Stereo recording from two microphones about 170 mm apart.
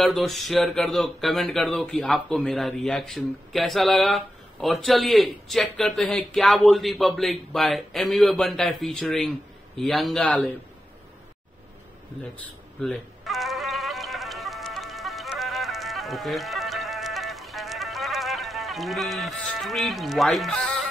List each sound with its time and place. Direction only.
0.0 s speech: centre (ahead or behind)
12.4 s bleat: centre (ahead or behind)